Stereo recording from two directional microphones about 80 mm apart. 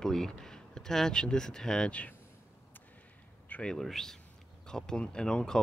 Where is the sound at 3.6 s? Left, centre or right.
Centre.